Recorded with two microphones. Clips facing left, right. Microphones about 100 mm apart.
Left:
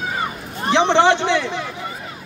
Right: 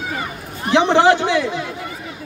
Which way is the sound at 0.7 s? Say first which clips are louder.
Right 1 dB; 5° right (ahead or behind).